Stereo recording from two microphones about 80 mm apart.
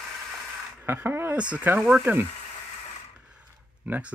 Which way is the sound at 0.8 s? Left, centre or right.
Right.